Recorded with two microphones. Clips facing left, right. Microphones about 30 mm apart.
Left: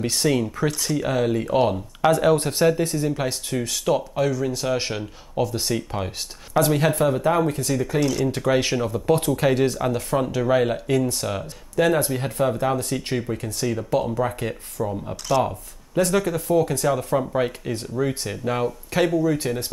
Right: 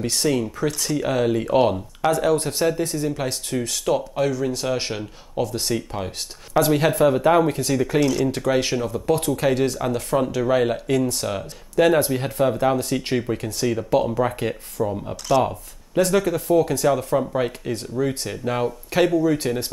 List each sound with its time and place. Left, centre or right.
0.0 s speech: centre
2.0 s speech: centre
7.1 s speech: centre
8.4 s speech: centre